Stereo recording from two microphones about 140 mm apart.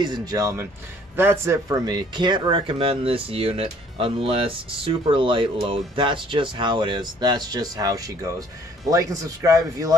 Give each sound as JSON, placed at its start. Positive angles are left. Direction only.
{"t": 0.0, "sound": "a man's voice", "side_deg": -30}